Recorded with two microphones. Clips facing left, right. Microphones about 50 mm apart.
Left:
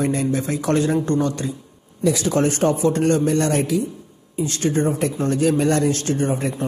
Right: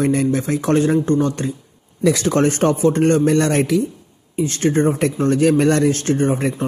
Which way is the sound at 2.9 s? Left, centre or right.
Right.